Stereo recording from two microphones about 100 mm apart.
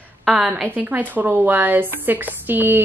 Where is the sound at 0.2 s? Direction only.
5° right (ahead or behind).